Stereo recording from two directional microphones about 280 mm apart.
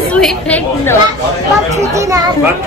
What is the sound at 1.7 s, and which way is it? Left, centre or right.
Speech, centre.